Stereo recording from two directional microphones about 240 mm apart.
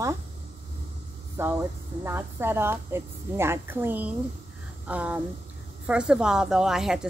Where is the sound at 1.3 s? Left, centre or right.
Centre.